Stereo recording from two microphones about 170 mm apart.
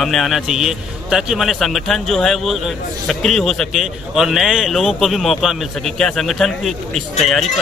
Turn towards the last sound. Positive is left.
turn(degrees=0)  # may be behind; listen again after turning